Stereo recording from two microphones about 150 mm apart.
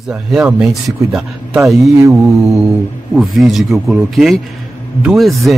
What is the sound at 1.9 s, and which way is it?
Mantra, 20° right (ahead or behind).